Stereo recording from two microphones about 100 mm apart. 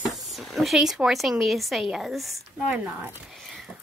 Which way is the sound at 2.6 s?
15° right (ahead or behind).